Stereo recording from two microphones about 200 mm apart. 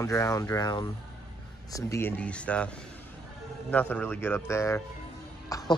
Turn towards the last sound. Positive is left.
turn(degrees=15)  # may be behind; listen again after turning